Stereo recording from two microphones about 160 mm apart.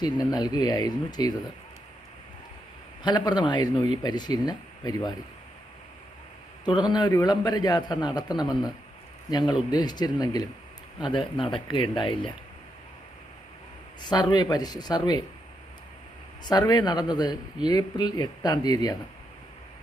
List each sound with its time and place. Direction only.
0.0 s a man's voice: 25° left (ahead or behind)
3.0 s a man's voice: 25° left (ahead or behind)
6.6 s a man's voice: 25° left (ahead or behind)
14.0 s a man's voice: 25° left (ahead or behind)
16.4 s a man's voice: 25° left (ahead or behind)